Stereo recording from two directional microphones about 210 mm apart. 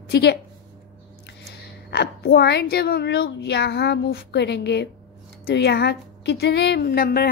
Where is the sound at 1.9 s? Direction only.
50° left (ahead or behind).